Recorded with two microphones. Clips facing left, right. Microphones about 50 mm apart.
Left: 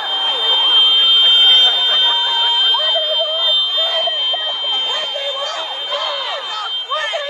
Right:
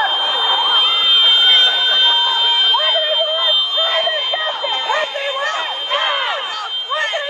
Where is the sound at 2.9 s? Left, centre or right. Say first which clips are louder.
Right 1 dB; right.